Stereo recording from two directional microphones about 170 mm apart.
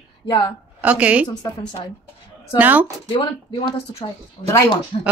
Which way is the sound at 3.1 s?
30° left (ahead or behind).